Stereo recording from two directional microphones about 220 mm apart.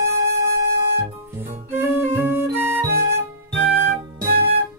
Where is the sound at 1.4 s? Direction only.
10° right (ahead or behind).